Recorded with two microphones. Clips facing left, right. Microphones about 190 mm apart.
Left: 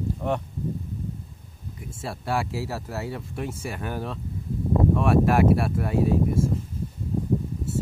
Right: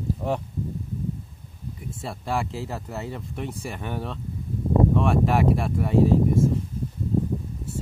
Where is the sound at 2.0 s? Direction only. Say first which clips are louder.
Left 1 dB; centre (ahead or behind).